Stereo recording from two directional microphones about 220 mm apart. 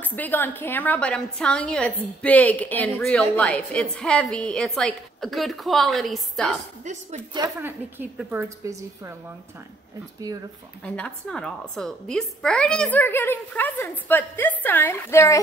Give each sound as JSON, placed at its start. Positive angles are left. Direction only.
{"t": 0.0, "sound": "a woman's voice", "side_deg": 10}
{"t": 6.8, "sound": "speech", "side_deg": -35}
{"t": 7.3, "sound": "a woman's voice", "side_deg": -15}
{"t": 10.3, "sound": "speech", "side_deg": -20}
{"t": 10.8, "sound": "a woman's voice", "side_deg": 5}